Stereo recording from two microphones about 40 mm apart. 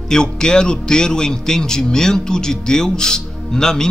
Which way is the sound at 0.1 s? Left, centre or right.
Centre.